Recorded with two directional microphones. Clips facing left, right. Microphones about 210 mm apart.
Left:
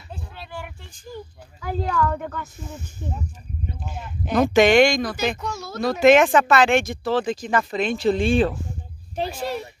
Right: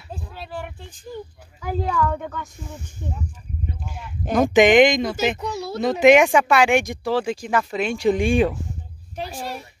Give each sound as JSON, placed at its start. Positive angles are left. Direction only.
{"t": 1.6, "sound": "a woman's voice", "side_deg": -5}
{"t": 3.0, "sound": "speech", "side_deg": -15}
{"t": 4.3, "sound": "speech", "side_deg": -15}
{"t": 5.5, "sound": "speech", "side_deg": -35}
{"t": 5.8, "sound": "speech", "side_deg": -20}